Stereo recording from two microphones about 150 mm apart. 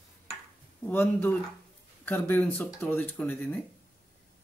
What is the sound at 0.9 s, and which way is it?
Speech, 15° left (ahead or behind).